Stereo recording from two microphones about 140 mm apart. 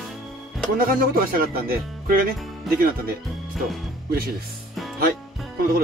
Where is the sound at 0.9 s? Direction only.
90° right.